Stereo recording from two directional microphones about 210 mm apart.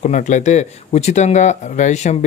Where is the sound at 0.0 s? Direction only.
35° left (ahead or behind).